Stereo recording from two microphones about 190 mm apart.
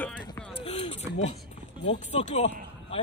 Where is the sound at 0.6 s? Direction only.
30° left (ahead or behind).